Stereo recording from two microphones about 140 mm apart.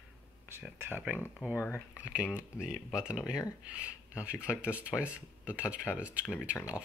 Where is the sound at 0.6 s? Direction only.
15° right (ahead or behind).